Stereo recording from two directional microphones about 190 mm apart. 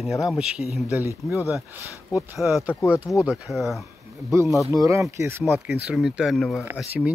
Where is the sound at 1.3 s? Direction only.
15° left (ahead or behind).